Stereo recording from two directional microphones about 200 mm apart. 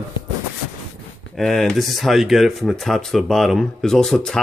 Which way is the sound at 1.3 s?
Centre (ahead or behind).